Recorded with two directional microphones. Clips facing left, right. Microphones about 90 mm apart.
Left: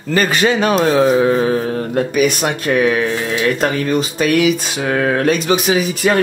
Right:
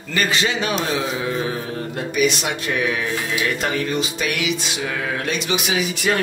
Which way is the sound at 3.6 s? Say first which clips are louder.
Left 6 dB; 45° left (ahead or behind).